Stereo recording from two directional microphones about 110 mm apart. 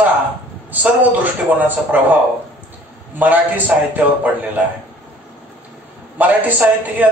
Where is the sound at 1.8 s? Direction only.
15° right (ahead or behind).